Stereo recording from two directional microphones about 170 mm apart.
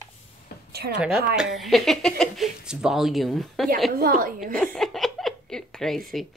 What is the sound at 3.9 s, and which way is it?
Speech, 60° right (ahead or behind).